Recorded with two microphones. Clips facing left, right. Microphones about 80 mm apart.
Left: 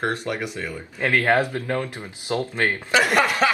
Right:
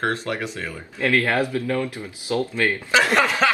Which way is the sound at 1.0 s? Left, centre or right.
Left.